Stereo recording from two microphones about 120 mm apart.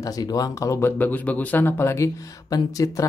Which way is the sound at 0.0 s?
30° left (ahead or behind).